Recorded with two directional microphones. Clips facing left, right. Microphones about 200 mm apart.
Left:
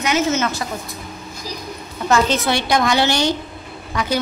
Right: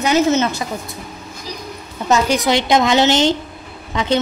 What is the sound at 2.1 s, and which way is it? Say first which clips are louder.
A woman's voice: right 2 dB; 15° right (ahead or behind).